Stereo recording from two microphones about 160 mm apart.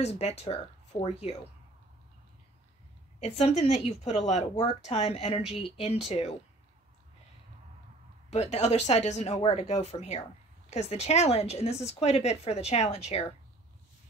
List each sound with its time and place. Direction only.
0.0 s speech: 40° left (ahead or behind)
3.2 s speech: 40° left (ahead or behind)
8.3 s a woman's voice: 45° left (ahead or behind)